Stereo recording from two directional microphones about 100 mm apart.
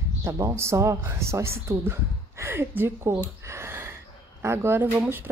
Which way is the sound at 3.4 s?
25° right (ahead or behind).